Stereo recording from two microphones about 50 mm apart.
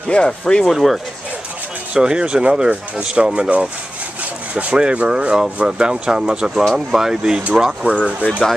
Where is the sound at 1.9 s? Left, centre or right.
Centre.